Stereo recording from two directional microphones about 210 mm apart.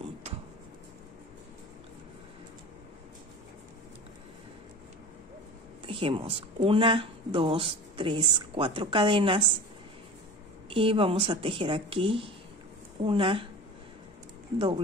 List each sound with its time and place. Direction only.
5.9 s speech: 25° right (ahead or behind)
10.7 s speech: 25° right (ahead or behind)